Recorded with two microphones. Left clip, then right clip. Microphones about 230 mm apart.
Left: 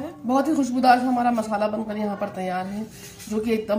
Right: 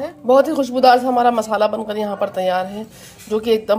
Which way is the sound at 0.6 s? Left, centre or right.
Right.